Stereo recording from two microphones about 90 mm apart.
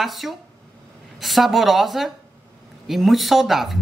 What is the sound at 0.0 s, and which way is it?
Speech, centre (ahead or behind).